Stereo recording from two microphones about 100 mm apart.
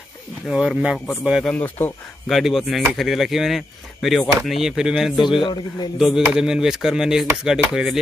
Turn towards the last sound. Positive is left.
turn(degrees=-5)  # may be behind; listen again after turning